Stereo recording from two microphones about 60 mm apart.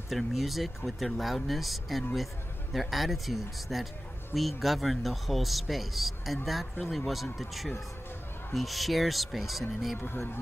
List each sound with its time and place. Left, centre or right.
0.1 s speech: centre
9.9 s speech: left